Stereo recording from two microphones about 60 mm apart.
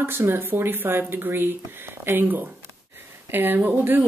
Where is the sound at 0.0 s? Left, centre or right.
Right.